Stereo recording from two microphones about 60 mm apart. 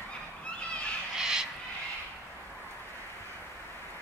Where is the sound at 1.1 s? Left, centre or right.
Centre.